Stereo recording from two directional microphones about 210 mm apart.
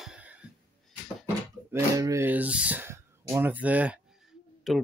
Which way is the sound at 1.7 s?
15° right (ahead or behind).